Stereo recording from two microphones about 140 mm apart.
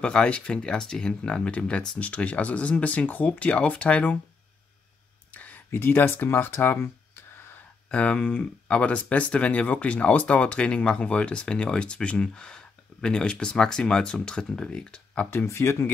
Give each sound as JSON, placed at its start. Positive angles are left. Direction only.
{"t": 0.0, "sound": "speech", "side_deg": 5}
{"t": 5.3, "sound": "speech", "side_deg": 10}
{"t": 15.2, "sound": "speech", "side_deg": 20}